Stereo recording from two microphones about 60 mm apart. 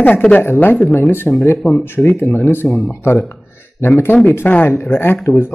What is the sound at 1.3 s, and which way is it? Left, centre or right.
Speech, centre.